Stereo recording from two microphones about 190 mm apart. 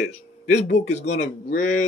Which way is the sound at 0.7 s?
35° left (ahead or behind).